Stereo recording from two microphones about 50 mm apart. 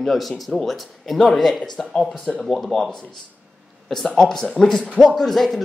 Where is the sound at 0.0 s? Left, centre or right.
Centre.